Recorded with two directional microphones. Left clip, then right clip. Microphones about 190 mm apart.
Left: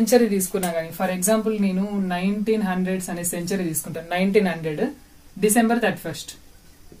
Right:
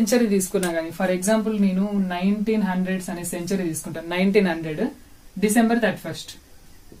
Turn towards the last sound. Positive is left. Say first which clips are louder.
# even
turn(degrees=-10)  # may be behind; listen again after turning